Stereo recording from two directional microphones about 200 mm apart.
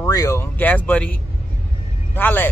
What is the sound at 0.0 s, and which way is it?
Speech, 15° left (ahead or behind).